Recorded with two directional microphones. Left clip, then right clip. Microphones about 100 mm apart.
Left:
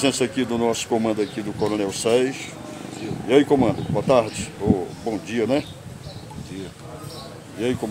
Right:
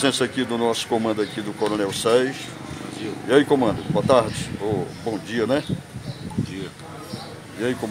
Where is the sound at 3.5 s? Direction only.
20° left (ahead or behind).